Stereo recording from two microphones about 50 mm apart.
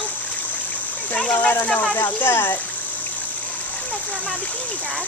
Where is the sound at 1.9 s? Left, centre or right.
Left.